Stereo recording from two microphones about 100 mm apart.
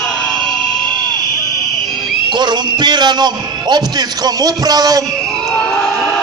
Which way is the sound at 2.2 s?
50° right (ahead or behind).